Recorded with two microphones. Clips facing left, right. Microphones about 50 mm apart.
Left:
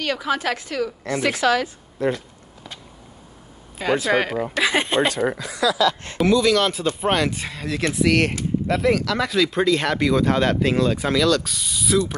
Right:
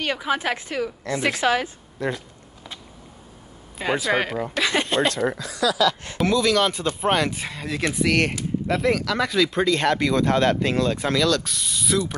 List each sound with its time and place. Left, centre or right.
0.0 s a woman's voice: right
4.0 s speech: centre
4.8 s speech: left
5.4 s speech: left
6.1 s speech: centre